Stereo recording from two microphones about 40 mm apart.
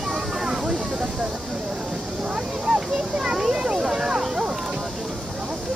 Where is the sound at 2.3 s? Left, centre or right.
Right.